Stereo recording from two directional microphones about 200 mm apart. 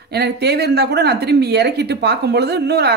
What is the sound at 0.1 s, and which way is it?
A woman's voice, 55° right (ahead or behind).